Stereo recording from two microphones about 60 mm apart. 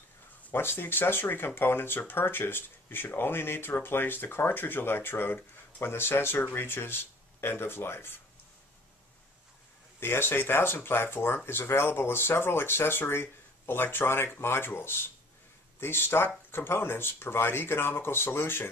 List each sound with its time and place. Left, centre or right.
0.5 s speech: left
9.9 s speech: left